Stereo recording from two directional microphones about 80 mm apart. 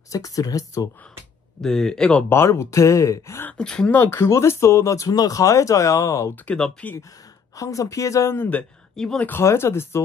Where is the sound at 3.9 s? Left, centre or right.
Left.